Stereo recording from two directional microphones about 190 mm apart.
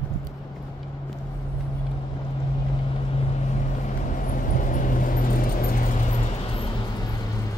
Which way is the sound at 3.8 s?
45° left (ahead or behind).